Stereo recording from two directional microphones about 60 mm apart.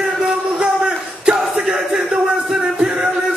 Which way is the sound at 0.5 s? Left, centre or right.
Centre.